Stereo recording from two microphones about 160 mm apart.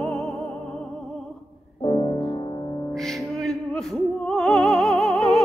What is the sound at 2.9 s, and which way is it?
Music, centre (ahead or behind).